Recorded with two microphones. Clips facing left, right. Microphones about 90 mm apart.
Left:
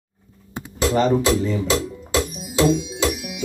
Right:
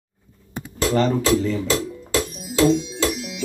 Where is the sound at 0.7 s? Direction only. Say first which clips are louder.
Left 1 dB; 20° left (ahead or behind).